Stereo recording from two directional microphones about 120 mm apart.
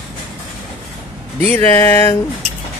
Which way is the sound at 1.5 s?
20° left (ahead or behind).